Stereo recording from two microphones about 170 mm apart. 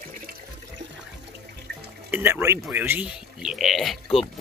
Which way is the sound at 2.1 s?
15° right (ahead or behind).